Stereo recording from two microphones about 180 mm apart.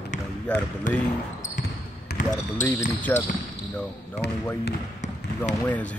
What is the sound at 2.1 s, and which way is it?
Basketball bounce, 60° left (ahead or behind).